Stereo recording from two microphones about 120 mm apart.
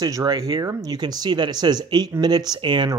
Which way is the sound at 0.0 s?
30° right (ahead or behind).